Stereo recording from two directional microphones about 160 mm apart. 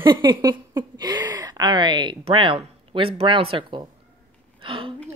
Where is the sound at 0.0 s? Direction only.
30° right (ahead or behind).